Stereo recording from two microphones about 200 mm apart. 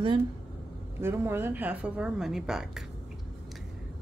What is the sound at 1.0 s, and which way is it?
Speech, 10° right (ahead or behind).